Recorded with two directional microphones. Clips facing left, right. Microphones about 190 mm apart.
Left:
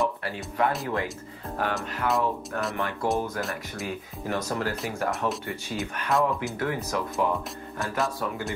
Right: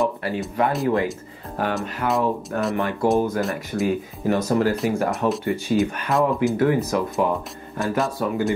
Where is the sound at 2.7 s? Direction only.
15° right (ahead or behind).